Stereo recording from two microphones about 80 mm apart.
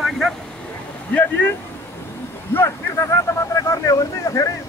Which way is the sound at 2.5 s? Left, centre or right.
Left.